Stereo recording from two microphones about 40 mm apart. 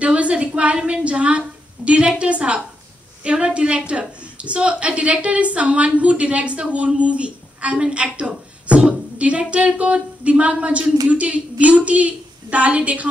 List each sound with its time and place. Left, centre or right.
0.0 s a woman's voice: right